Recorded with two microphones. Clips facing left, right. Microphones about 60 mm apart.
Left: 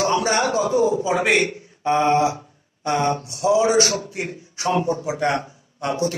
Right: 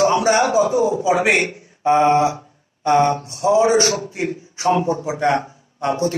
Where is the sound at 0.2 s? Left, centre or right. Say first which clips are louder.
Right 4 dB; right.